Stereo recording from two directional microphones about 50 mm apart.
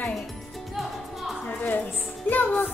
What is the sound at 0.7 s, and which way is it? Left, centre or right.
Music, centre.